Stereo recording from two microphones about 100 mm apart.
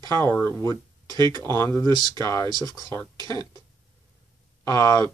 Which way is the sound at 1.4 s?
25° left (ahead or behind).